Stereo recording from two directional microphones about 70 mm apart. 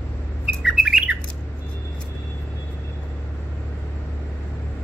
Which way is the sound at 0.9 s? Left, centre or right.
Centre.